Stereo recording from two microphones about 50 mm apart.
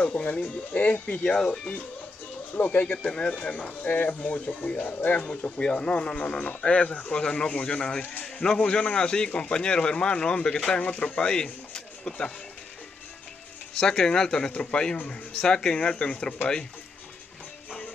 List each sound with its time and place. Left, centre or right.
0.0 s speech: left
1.2 s speech: centre
2.5 s speech: left
5.6 s speech: centre
13.7 s speech: centre